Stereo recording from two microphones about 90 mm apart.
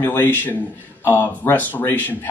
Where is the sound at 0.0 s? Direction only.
25° left (ahead or behind).